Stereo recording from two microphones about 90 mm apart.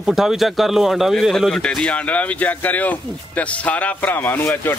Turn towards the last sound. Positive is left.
turn(degrees=25)  # may be behind; listen again after turning